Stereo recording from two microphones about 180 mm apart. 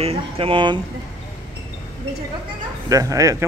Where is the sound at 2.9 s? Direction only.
20° right (ahead or behind).